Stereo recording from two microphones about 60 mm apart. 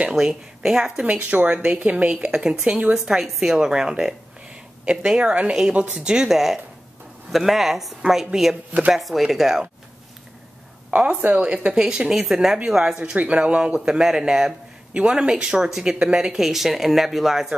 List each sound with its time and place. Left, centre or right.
0.1 s speech: centre
1.0 s speech: right; by 9.7 s centre
10.9 s speech: right; by 13.0 s centre
13.0 s speech: right; by 17.6 s centre